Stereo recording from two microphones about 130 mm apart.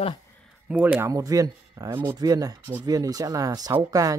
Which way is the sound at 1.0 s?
25° right (ahead or behind).